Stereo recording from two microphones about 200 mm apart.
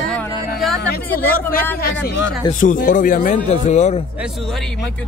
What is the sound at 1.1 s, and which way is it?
Speech, 10° left (ahead or behind).